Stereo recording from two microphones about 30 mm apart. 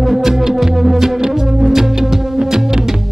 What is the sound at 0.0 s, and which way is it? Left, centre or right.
Music, centre.